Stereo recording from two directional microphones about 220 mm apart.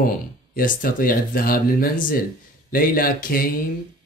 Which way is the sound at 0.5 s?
40° left (ahead or behind).